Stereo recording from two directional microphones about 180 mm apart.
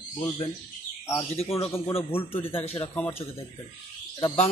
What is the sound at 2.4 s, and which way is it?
Speech, 10° left (ahead or behind).